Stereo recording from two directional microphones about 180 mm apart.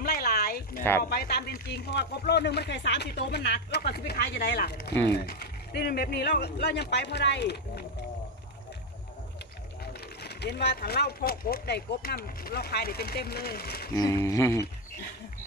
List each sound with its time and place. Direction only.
0.0 s a sound: 60° left (ahead or behind)
1.0 s speech: 60° left (ahead or behind)
10.2 s speech: 65° left (ahead or behind)
13.9 s speech: 20° left (ahead or behind)